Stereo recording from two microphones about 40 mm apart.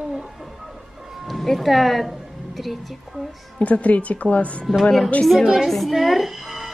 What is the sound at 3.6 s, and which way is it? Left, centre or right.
Speech, left.